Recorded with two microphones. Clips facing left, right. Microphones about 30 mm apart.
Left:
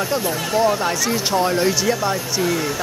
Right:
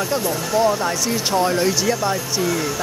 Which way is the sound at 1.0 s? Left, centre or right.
Centre.